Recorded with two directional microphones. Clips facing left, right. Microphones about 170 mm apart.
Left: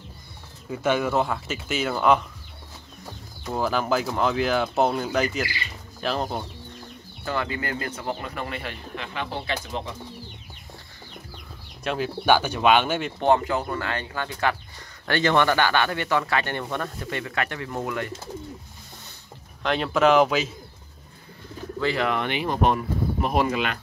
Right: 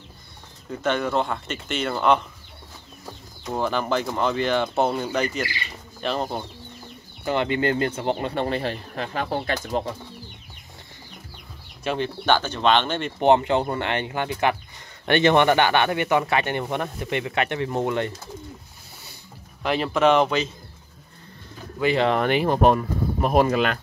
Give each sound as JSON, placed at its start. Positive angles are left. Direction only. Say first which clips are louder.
{"t": 0.7, "sound": "speech", "louder": "left 1 dB", "side_deg": 5}
{"t": 3.5, "sound": "speech", "louder": "even", "side_deg": 0}
{"t": 7.2, "sound": "speech", "louder": "right 6 dB", "side_deg": -25}
{"t": 11.8, "sound": "speech", "louder": "right 1 dB", "side_deg": 0}
{"t": 12.3, "sound": "speech", "louder": "left 1 dB", "side_deg": 10}
{"t": 13.2, "sound": "speech", "louder": "right 4 dB", "side_deg": -20}
{"t": 19.6, "sound": "speech", "louder": "right 1 dB", "side_deg": -5}
{"t": 21.7, "sound": "speech", "louder": "right 4 dB", "side_deg": -20}
{"t": 22.0, "sound": "speech", "louder": "right 5 dB", "side_deg": -40}